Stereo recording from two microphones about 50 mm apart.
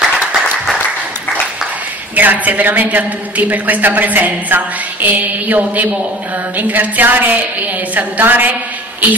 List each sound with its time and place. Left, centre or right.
2.1 s a woman's voice: right